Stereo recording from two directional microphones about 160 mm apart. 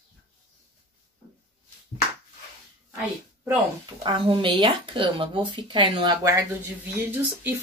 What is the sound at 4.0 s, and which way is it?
Speech, 30° right (ahead or behind).